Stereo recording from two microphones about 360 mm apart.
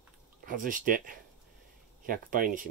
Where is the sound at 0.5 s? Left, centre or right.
Right.